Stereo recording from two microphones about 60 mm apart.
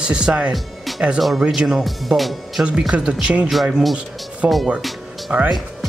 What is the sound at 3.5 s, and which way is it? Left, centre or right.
Speech, centre.